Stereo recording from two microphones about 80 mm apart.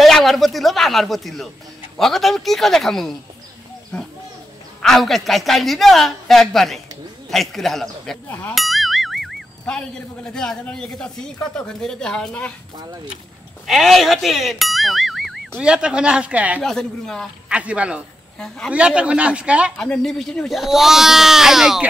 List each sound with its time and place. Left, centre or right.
0.0 s speech: centre
4.8 s speech: centre
8.3 s speech: centre
8.5 s music: centre
10.7 s speech: centre
13.7 s speech: centre
15.6 s a man's voice: centre
16.6 s speech: centre
17.5 s a man's voice: centre
19.8 s speech: centre